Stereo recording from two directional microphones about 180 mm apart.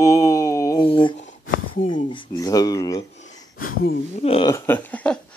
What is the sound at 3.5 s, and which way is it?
Speech, 55° left (ahead or behind).